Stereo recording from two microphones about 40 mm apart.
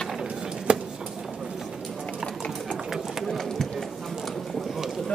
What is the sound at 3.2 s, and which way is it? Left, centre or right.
Bird, centre.